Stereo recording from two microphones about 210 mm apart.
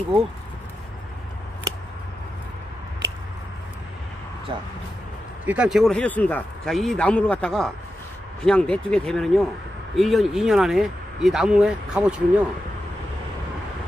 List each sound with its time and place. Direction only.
4.5 s speech: 25° right (ahead or behind)
5.4 s speech: 5° right (ahead or behind)